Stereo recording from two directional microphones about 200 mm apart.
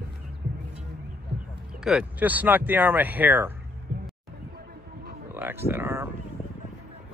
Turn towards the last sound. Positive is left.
turn(degrees=-10)  # may be behind; listen again after turning